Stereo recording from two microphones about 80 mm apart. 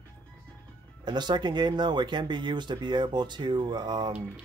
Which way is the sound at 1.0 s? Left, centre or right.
Right.